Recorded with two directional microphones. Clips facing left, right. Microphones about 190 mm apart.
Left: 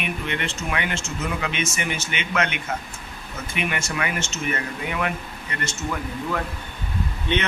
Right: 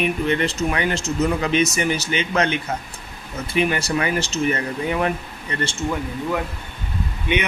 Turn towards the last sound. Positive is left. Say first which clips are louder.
# right 2 dB
turn(degrees=-10)  # may be behind; listen again after turning